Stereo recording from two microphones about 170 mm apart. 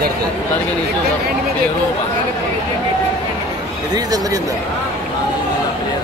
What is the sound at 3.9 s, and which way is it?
Speech, 20° right (ahead or behind).